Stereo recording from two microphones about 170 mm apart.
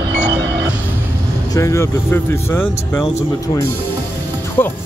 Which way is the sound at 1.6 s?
15° left (ahead or behind).